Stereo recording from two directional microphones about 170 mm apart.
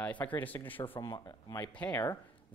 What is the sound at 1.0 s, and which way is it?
Speech, 25° left (ahead or behind).